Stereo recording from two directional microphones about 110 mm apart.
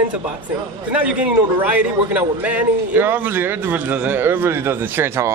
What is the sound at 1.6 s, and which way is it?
A man's voice, 15° right (ahead or behind).